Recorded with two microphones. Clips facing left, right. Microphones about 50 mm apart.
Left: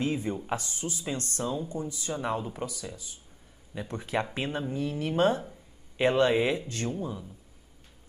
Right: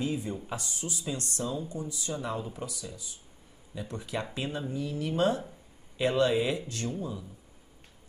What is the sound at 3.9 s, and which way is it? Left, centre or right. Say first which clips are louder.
Speech: left 5 dB; left.